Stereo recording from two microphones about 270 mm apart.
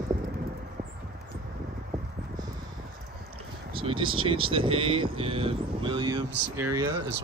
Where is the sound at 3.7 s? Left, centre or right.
Centre.